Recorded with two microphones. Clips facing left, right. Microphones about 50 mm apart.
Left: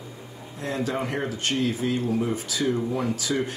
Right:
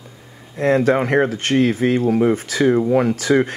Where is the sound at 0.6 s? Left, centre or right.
Right.